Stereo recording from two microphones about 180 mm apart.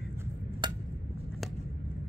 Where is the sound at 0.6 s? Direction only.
25° right (ahead or behind).